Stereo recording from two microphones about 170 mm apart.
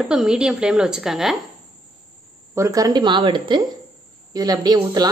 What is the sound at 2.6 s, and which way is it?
Speech, 20° right (ahead or behind).